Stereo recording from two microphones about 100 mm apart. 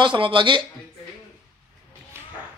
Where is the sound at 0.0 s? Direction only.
55° right (ahead or behind).